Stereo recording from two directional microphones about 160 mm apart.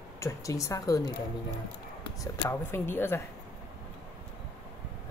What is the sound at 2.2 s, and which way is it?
Speech, 15° left (ahead or behind).